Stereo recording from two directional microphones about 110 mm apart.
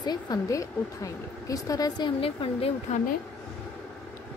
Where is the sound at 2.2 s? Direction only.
60° left (ahead or behind).